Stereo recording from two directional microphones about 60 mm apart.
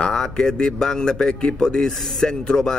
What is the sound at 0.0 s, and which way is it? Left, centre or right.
A man's voice, centre.